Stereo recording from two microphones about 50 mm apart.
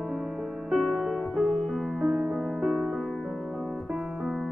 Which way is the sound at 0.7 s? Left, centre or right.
Centre.